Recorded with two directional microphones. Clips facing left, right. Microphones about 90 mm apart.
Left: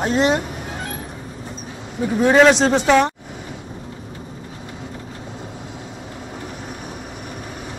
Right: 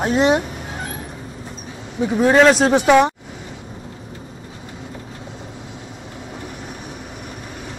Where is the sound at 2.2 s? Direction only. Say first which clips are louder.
Even; centre (ahead or behind).